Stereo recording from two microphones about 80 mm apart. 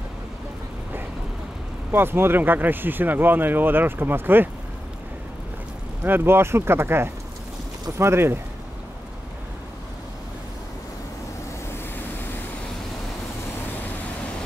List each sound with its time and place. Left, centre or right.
1.9 s speech: right
6.0 s speech: right